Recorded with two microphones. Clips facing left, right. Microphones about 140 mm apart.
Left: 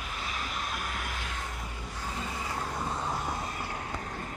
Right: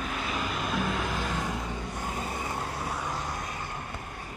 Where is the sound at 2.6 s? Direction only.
70° right (ahead or behind).